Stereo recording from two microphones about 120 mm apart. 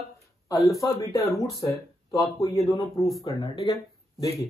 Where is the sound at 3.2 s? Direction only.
40° left (ahead or behind).